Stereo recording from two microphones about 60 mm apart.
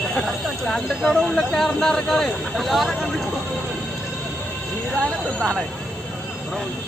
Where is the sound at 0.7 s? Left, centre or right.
Centre.